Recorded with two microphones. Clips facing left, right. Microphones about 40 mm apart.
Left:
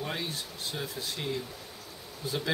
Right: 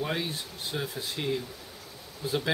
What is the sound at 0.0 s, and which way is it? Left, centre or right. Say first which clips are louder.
Speech: right 3 dB; centre.